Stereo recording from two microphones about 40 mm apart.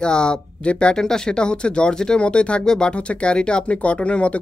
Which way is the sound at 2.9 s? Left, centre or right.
Left.